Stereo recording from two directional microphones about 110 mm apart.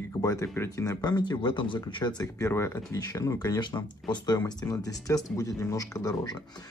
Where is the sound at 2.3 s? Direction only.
25° left (ahead or behind).